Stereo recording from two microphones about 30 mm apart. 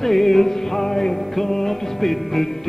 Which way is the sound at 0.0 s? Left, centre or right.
Centre.